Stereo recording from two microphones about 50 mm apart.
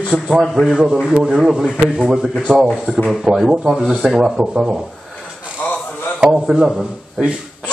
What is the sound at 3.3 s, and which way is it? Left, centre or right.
A man's voice, centre.